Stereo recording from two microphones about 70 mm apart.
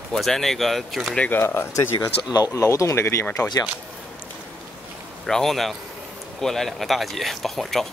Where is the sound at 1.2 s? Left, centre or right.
Left.